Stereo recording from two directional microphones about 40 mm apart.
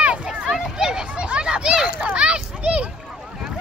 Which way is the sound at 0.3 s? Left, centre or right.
Centre.